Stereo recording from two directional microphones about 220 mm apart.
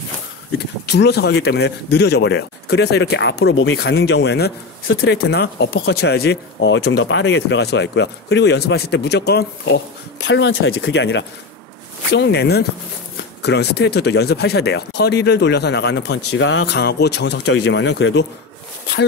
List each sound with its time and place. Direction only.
0.8 s speech: 50° left (ahead or behind)